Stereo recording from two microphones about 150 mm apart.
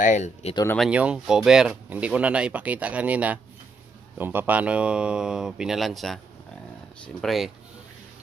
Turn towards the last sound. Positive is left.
turn(degrees=0)  # may be behind; listen again after turning